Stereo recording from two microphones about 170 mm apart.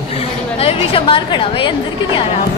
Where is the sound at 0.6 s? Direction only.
35° left (ahead or behind).